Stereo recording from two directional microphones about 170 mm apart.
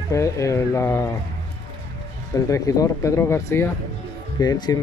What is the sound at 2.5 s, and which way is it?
Speech, 20° left (ahead or behind).